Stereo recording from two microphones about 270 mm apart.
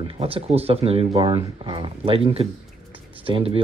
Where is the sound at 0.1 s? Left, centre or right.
Right.